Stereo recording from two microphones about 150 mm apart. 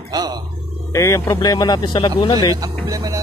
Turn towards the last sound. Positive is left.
turn(degrees=-25)  # may be behind; listen again after turning